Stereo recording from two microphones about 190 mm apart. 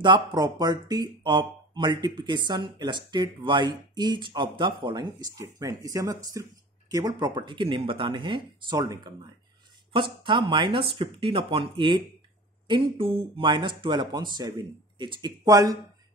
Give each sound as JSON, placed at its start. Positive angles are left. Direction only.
{"t": 0.0, "sound": "speech", "side_deg": -25}